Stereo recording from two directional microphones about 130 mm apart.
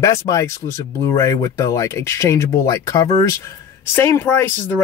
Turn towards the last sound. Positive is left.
turn(degrees=15)  # may be behind; listen again after turning